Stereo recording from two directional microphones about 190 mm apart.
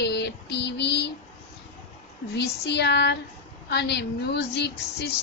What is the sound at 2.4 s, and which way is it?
A woman's voice, 60° left (ahead or behind).